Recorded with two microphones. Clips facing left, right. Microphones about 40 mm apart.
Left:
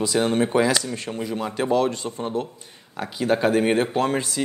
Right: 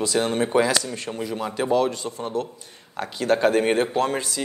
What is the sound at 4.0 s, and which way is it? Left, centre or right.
Speech, centre.